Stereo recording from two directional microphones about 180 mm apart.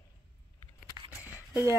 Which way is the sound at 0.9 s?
20° left (ahead or behind).